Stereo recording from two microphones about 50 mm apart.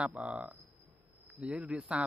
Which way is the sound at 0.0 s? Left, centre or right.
Right.